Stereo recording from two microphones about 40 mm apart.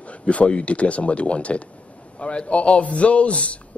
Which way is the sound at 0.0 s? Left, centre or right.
Left.